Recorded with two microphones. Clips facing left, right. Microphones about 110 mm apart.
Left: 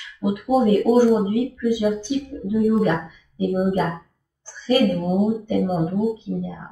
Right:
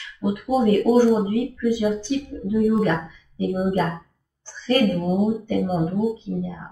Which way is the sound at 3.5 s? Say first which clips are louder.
Left 1 dB; centre (ahead or behind).